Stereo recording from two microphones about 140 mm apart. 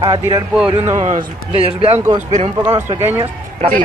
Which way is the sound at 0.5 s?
10° right (ahead or behind).